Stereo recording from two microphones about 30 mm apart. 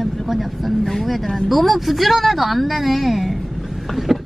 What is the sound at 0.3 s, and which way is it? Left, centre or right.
Speech, centre.